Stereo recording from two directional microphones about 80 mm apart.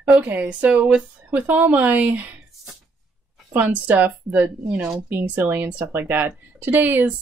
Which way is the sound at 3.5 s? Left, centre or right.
Right.